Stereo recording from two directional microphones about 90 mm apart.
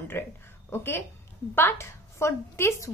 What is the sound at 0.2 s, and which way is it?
A woman's voice, 25° left (ahead or behind).